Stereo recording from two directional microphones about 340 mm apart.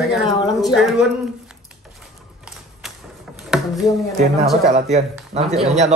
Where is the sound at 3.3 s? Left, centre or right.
Centre.